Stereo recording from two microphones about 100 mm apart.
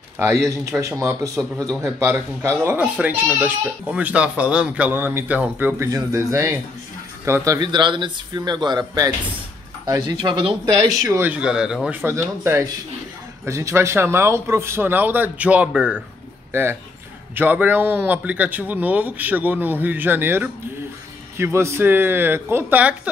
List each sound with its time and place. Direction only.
0.2 s a man's voice: 30° right (ahead or behind)
5.8 s a man's voice: 30° right (ahead or behind)
7.6 s speech: 50° right (ahead or behind)
10.0 s speech: 50° right (ahead or behind)
10.6 s a man's voice: 35° right (ahead or behind)
11.2 s a man's voice: 10° right (ahead or behind)
11.9 s a man's voice: 25° right (ahead or behind)
17.4 s a man's voice: 15° right (ahead or behind)